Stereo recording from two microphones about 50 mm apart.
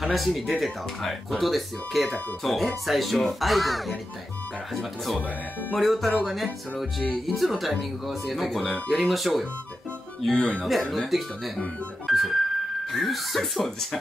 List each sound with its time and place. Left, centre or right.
0.0 s speech: centre
10.3 s speech: centre
10.6 s speech: centre
12.1 s music: centre
12.9 s speech: centre